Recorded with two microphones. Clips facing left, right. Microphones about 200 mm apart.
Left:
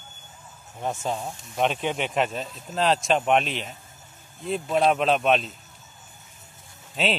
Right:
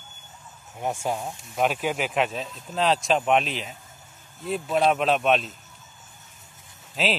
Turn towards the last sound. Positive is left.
turn(degrees=0)  # may be behind; listen again after turning